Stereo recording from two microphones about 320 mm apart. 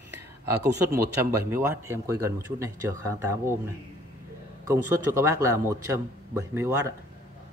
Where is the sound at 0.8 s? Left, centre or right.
Centre.